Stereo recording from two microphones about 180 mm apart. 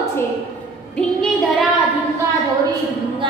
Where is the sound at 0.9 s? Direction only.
5° left (ahead or behind).